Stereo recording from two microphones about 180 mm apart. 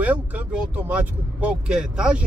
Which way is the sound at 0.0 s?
10° right (ahead or behind).